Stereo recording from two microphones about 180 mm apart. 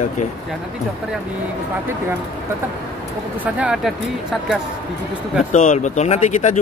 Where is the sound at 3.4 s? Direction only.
5° right (ahead or behind).